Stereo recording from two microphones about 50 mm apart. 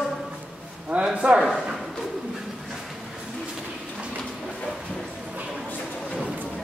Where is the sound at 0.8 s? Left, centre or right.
Right.